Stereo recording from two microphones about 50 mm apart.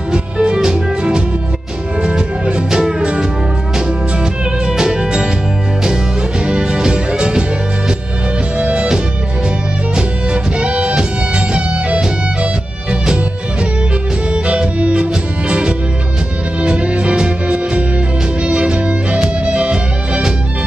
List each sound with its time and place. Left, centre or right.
0.1 s music: centre
6.4 s music: centre
8.5 s music: right
9.9 s music: right